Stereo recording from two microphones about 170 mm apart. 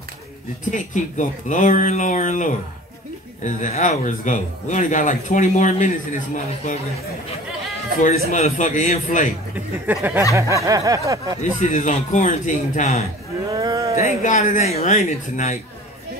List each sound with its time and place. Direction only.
0.7 s speech: 50° left (ahead or behind)
8.3 s speech: 45° left (ahead or behind)
9.8 s speech: 10° right (ahead or behind)
10.3 s a sound: 20° right (ahead or behind)
11.6 s speech: 45° left (ahead or behind)
13.5 s speech: 20° right (ahead or behind)
14.0 s speech: 45° left (ahead or behind)